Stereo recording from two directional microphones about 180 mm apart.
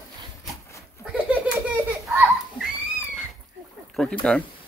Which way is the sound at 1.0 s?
5° right (ahead or behind).